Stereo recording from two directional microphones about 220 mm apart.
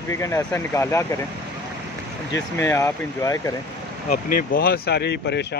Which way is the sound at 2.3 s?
15° left (ahead or behind).